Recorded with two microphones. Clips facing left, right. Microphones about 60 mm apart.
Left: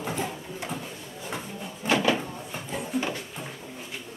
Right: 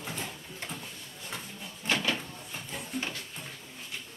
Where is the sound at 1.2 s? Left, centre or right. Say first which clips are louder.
Left 6 dB; centre.